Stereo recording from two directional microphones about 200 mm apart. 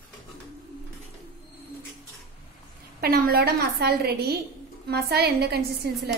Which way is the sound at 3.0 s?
50° right (ahead or behind).